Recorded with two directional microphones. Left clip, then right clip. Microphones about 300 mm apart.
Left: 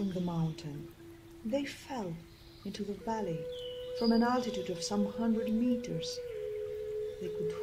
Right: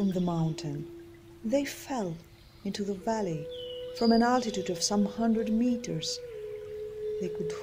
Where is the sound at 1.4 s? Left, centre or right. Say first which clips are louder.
Right 6 dB; right.